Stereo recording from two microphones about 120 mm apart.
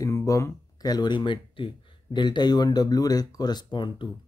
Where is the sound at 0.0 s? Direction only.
25° left (ahead or behind).